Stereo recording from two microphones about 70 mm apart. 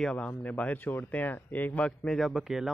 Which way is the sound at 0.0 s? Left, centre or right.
Centre.